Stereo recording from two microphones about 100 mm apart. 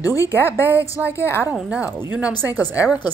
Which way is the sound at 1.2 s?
25° left (ahead or behind).